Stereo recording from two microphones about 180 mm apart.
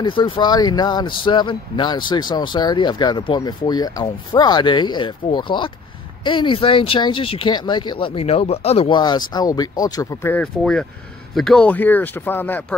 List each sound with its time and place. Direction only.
0.0 s speech: 25° left (ahead or behind)
10.3 s speech: 5° left (ahead or behind)